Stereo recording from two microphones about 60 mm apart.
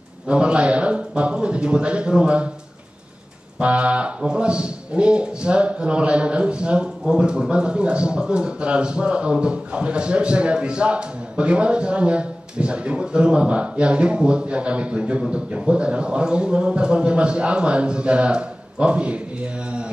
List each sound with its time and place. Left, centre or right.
0.3 s a man's voice: centre
3.5 s speech: centre